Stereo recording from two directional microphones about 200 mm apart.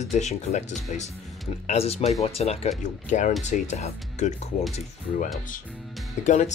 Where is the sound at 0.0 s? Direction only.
35° left (ahead or behind).